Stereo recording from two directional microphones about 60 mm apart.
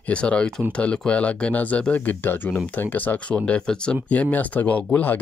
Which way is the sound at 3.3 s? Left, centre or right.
Centre.